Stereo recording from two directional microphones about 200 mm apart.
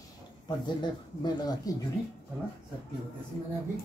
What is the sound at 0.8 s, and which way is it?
Speech, 20° left (ahead or behind).